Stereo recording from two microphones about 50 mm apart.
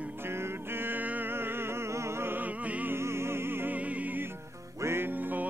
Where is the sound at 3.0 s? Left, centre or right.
Right.